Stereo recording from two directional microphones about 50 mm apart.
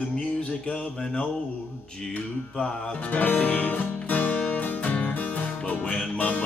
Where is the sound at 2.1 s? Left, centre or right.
Left.